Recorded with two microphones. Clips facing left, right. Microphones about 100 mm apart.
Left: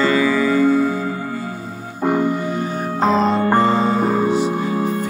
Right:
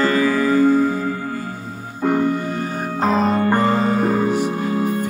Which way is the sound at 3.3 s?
25° left (ahead or behind).